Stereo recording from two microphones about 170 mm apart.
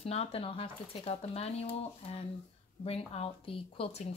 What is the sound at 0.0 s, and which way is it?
Speech, 35° left (ahead or behind).